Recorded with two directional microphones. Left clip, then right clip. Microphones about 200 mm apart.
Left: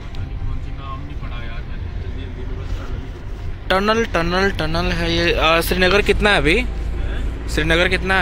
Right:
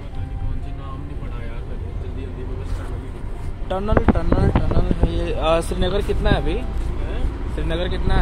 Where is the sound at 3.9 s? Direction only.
45° left (ahead or behind).